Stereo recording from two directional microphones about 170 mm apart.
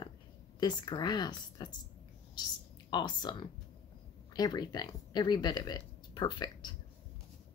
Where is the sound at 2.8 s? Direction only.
25° left (ahead or behind).